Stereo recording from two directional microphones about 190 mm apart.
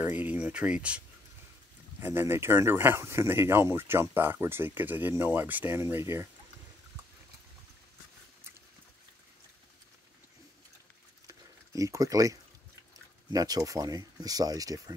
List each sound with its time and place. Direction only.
0.0 s speech: 10° right (ahead or behind)
11.2 s a sound: 15° right (ahead or behind)
13.3 s speech: 20° right (ahead or behind)